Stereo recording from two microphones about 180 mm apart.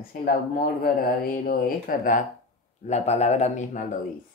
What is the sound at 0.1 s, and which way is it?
Speech, 50° left (ahead or behind).